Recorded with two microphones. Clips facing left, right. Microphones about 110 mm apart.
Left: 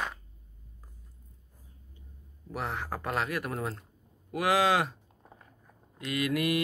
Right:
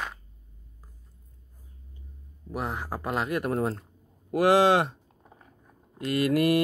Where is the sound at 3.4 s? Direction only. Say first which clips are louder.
Right 7 dB; 35° right (ahead or behind).